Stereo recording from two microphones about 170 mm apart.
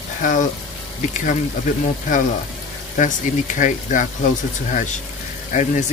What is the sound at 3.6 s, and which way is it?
Speech, 50° left (ahead or behind).